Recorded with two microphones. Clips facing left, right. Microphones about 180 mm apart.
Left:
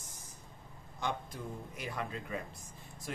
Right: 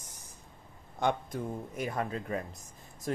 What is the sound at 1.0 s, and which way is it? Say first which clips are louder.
Speech: right 7 dB; 50° right (ahead or behind).